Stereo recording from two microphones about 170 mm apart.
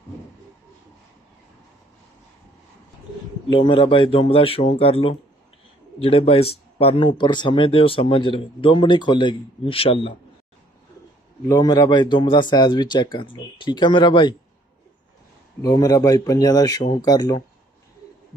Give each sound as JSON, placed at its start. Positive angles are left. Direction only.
{"t": 3.5, "sound": "speech", "side_deg": 30}
{"t": 11.4, "sound": "speech", "side_deg": 20}
{"t": 15.6, "sound": "speech", "side_deg": 20}